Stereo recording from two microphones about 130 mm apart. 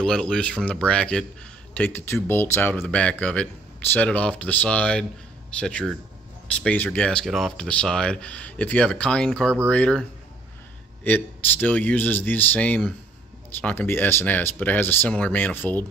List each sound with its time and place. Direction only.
0.0 s speech: 5° left (ahead or behind)
11.1 s speech: 15° left (ahead or behind)